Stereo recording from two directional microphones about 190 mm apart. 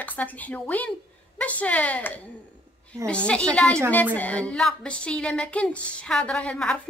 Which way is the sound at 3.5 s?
5° left (ahead or behind).